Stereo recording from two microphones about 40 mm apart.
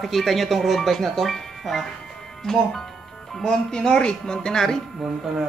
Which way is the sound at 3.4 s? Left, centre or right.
Centre.